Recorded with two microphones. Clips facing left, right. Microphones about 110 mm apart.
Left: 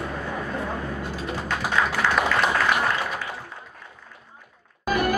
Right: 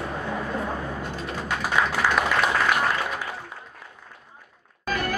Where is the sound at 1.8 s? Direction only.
15° right (ahead or behind).